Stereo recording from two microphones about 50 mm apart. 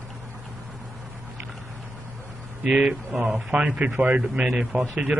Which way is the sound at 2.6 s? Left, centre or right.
Right.